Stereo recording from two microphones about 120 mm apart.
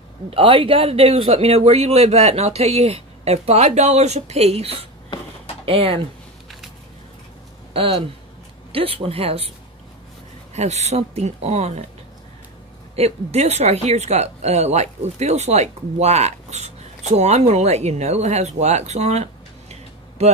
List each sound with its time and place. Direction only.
0.3 s a man's voice: 50° right (ahead or behind)
7.7 s speech: 50° right (ahead or behind)
10.5 s a man's voice: 65° right (ahead or behind)
12.9 s speech: 60° right (ahead or behind)